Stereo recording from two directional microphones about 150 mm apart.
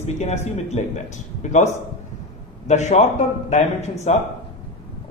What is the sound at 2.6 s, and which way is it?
A man's voice, 50° left (ahead or behind).